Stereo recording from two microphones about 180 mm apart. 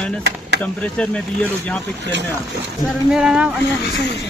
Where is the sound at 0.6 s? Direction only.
5° left (ahead or behind).